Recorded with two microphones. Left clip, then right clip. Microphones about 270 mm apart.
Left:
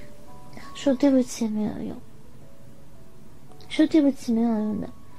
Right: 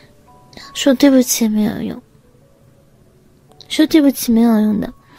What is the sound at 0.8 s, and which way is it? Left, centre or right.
Speech, right.